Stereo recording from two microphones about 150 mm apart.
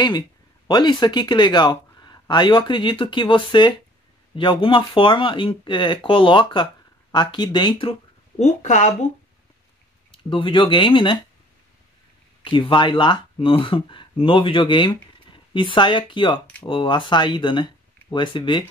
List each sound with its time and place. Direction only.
0.7 s speech: 30° left (ahead or behind)
8.4 s speech: 50° left (ahead or behind)
10.1 s speech: 35° left (ahead or behind)
12.4 s speech: 35° left (ahead or behind)